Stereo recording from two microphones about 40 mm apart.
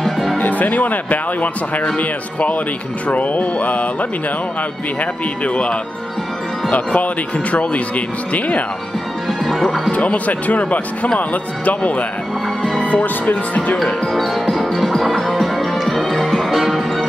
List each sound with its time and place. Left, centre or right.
0.0 s music: centre
0.4 s speech: left
5.4 s speech: left
9.4 s speech: centre
9.9 s speech: left
14.0 s music: centre